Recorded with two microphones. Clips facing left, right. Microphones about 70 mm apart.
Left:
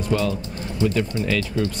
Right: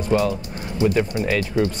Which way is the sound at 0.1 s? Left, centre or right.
Right.